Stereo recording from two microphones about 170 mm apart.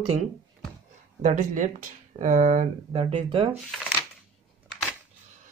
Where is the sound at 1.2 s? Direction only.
50° right (ahead or behind).